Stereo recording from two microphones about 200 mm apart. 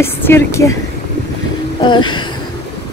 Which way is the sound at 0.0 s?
10° left (ahead or behind).